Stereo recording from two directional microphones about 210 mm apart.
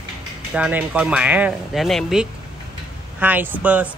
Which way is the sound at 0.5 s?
5° right (ahead or behind).